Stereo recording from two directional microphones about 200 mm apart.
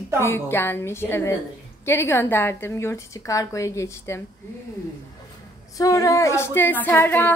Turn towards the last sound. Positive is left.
turn(degrees=10)  # may be behind; listen again after turning